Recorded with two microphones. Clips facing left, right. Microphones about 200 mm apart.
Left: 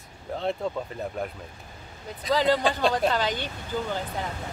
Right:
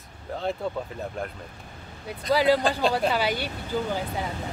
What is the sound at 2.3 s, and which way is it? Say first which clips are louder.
Speech: right 2 dB; 10° right (ahead or behind).